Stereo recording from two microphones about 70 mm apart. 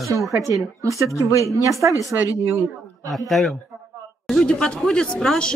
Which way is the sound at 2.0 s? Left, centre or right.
Left.